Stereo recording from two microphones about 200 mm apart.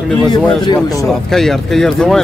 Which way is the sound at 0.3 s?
20° left (ahead or behind).